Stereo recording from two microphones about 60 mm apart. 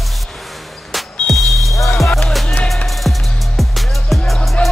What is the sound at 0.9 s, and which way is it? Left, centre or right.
Music, centre.